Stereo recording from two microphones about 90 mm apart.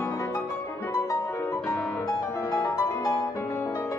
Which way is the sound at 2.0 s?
40° left (ahead or behind).